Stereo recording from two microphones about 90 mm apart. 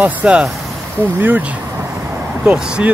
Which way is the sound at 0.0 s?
15° right (ahead or behind).